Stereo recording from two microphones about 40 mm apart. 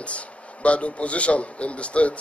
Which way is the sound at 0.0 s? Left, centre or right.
Left.